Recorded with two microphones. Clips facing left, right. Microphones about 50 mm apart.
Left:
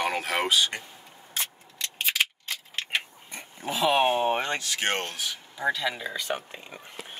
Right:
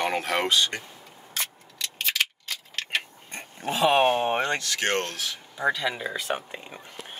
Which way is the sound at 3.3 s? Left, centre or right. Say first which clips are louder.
Right 2 dB; right.